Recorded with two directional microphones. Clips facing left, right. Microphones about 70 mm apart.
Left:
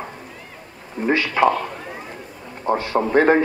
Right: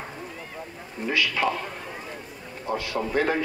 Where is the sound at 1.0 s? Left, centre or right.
Left.